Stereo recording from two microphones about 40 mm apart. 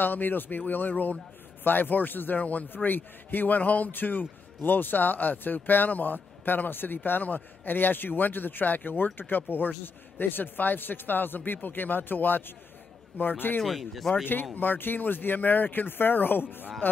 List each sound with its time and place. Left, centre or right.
0.0 s a man's voice: left
13.7 s speech: centre
14.4 s speech: left